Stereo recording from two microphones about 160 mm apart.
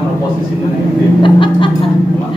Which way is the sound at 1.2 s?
30° left (ahead or behind).